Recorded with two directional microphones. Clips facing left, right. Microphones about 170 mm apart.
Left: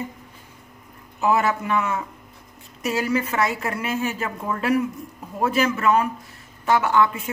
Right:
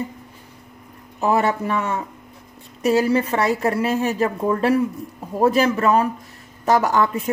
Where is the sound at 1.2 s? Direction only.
35° right (ahead or behind).